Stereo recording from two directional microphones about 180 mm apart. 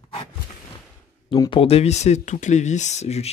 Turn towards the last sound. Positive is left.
turn(degrees=35)  # may be behind; listen again after turning